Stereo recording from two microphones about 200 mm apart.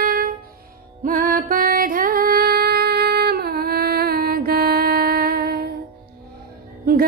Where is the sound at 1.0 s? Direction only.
45° right (ahead or behind).